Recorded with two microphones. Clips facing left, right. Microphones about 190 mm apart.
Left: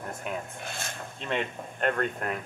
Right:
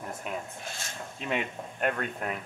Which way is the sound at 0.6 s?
60° left (ahead or behind).